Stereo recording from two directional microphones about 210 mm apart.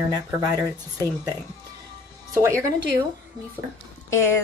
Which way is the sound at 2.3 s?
15° right (ahead or behind).